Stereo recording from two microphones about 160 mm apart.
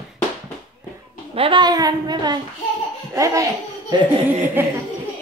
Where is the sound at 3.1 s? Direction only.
20° right (ahead or behind).